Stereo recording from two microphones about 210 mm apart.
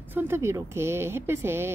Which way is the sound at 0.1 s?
10° right (ahead or behind).